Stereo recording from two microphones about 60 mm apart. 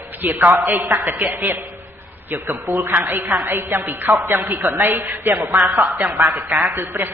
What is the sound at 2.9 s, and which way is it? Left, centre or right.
A man's voice, right.